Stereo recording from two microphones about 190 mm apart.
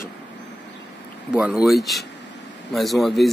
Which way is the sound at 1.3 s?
5° right (ahead or behind).